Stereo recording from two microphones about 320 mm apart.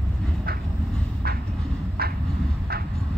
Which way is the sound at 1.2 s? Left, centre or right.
Right.